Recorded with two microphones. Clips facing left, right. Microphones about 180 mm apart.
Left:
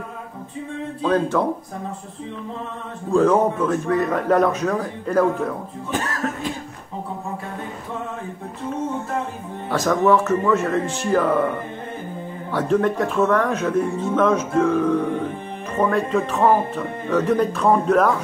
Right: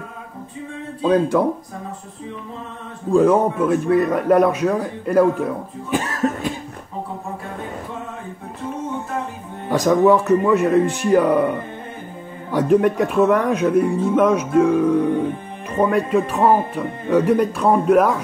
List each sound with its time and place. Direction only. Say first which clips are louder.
1.0 s speech: right 3 dB; 15° right (ahead or behind)
3.1 s speech: right 2 dB; 10° right (ahead or behind)
5.9 s cough: right 4 dB; 15° right (ahead or behind)
9.7 s speech: right 3 dB; 15° right (ahead or behind)